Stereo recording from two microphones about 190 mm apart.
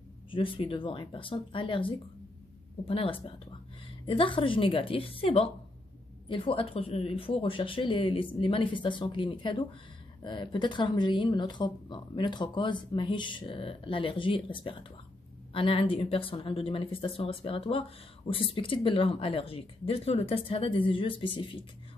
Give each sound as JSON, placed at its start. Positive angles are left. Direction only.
{"t": 0.3, "sound": "speech", "side_deg": 25}